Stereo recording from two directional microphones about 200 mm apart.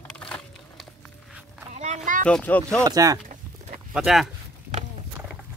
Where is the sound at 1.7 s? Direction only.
35° right (ahead or behind).